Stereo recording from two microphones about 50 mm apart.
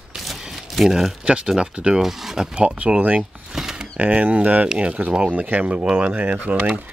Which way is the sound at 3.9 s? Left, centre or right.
Right.